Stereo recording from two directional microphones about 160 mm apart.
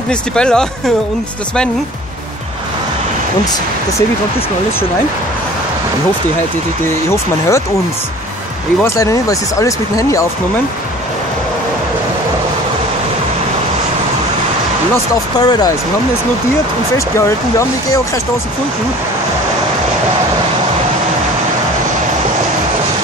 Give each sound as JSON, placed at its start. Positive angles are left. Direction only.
{"t": 0.1, "sound": "speech", "side_deg": 5}
{"t": 8.8, "sound": "speech", "side_deg": 20}
{"t": 15.3, "sound": "speech", "side_deg": 25}
{"t": 16.9, "sound": "speech", "side_deg": 20}